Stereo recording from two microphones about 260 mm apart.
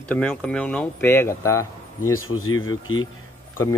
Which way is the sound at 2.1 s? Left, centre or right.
Left.